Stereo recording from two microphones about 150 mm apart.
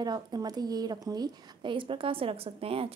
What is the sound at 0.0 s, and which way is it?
A woman's voice, 25° right (ahead or behind).